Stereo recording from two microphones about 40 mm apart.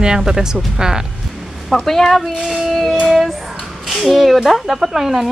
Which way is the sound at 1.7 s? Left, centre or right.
Centre.